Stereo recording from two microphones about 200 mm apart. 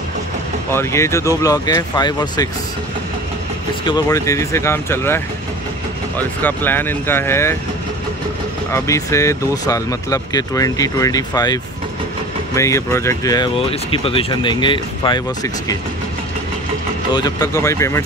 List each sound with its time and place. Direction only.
0.7 s speech: 15° left (ahead or behind)
3.8 s speech: 20° left (ahead or behind)
8.7 s speech: 15° left (ahead or behind)
17.1 s speech: 20° left (ahead or behind)